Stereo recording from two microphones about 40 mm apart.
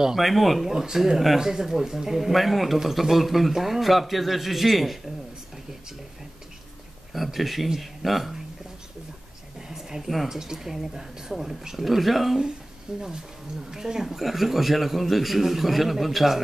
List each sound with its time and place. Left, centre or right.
0.2 s a man's voice: centre
7.3 s a man's voice: centre
9.6 s a sound: centre
10.2 s speech: centre
12.9 s a man's voice: centre